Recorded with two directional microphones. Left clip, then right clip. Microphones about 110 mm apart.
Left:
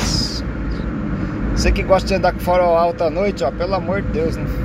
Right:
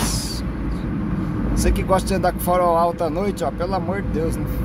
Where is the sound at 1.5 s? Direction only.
45° right (ahead or behind).